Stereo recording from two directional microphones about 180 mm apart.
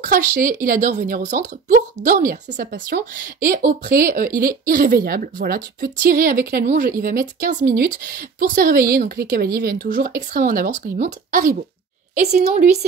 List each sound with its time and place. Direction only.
0.0 s speech: 50° right (ahead or behind)
2.9 s speech: 65° right (ahead or behind)
12.2 s a woman's voice: 40° right (ahead or behind)